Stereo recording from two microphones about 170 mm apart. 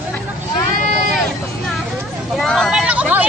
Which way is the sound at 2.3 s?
Centre (ahead or behind).